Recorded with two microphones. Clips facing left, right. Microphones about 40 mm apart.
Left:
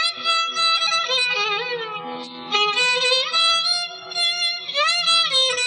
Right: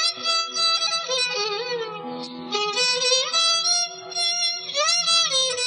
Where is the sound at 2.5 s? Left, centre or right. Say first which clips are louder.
Left 5 dB; left.